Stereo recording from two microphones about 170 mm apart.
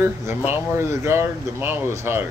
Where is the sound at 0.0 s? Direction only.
15° right (ahead or behind).